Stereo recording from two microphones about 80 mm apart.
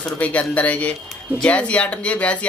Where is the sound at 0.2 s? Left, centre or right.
Centre.